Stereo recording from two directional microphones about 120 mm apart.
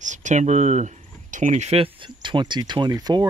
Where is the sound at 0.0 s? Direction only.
90° right; by 1.9 s 65° right (ahead or behind).